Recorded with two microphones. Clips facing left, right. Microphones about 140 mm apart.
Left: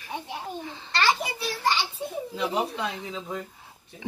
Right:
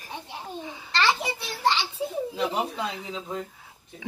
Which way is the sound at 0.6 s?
10° right (ahead or behind).